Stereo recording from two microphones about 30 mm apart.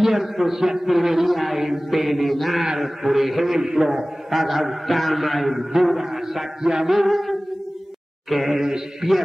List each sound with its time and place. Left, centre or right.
0.0 s a man's voice: centre
3.4 s a man's voice: centre
4.3 s a man's voice: centre
6.6 s music: right
6.9 s a man's voice: centre
8.5 s a man's voice: centre